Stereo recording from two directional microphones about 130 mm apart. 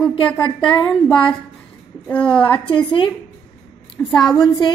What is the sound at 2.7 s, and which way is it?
Speech, 40° left (ahead or behind).